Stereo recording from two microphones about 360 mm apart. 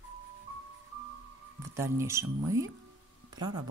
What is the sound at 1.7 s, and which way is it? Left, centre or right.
Speech, centre.